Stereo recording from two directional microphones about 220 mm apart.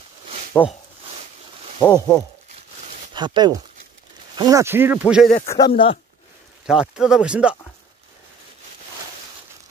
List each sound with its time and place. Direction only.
0.5 s speech: 10° left (ahead or behind)
1.8 s speech: 20° left (ahead or behind)
3.2 s speech: 20° right (ahead or behind); by 5.3 s 5° right (ahead or behind)
5.7 s speech: 25° left (ahead or behind)
6.6 s speech: 5° right (ahead or behind)